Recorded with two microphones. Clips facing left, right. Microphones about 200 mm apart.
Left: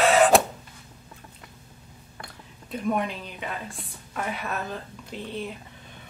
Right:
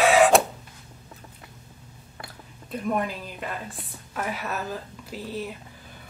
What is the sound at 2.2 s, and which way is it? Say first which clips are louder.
A woman's voice: right 1 dB; centre (ahead or behind).